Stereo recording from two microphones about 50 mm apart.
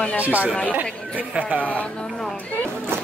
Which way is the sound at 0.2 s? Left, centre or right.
Right.